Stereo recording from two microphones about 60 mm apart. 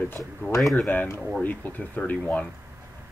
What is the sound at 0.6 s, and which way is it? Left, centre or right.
Speech, centre.